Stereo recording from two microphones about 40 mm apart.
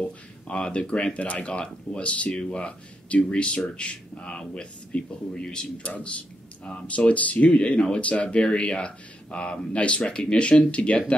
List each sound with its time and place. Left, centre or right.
0.5 s speech: left
1.1 s speech: left
1.4 s speech: left
5.8 s speech: left
8.4 s speech: left